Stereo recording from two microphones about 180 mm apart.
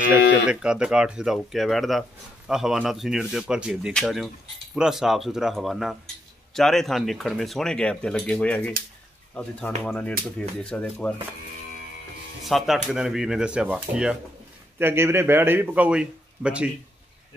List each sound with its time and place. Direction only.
0.1 s speech: 5° right (ahead or behind)
12.4 s a man's voice: centre (ahead or behind)